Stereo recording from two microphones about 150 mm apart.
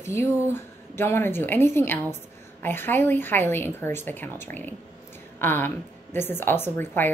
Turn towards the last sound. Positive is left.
turn(degrees=15)  # may be behind; listen again after turning